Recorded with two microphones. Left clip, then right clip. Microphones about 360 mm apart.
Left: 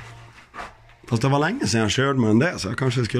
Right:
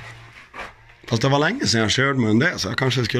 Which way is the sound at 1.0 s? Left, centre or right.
Centre.